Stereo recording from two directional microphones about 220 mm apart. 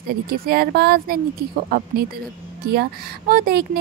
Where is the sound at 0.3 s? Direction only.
45° right (ahead or behind).